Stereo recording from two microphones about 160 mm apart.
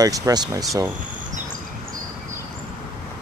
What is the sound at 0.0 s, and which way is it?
Speech, 25° right (ahead or behind).